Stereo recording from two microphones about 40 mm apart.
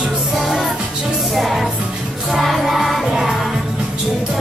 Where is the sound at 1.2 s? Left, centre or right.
Centre.